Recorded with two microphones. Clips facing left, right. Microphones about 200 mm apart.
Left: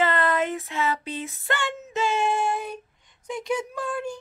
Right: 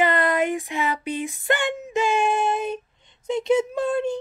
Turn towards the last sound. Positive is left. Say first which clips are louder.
# right 7 dB
turn(degrees=-25)  # may be behind; listen again after turning